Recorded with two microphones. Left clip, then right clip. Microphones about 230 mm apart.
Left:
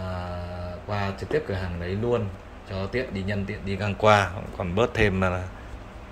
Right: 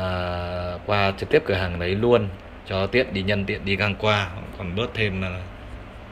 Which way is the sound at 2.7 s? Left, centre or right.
Centre.